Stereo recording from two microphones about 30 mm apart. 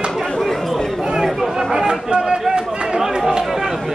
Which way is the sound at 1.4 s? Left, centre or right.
Centre.